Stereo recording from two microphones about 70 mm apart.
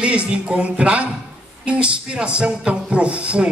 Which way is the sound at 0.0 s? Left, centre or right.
Centre.